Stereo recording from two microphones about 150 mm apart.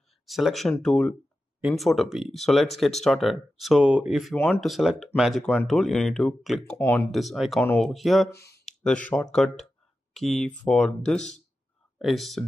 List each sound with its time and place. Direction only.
0.3 s speech: centre (ahead or behind)
6.8 s speech: 15° left (ahead or behind)
7.1 s speech: centre (ahead or behind)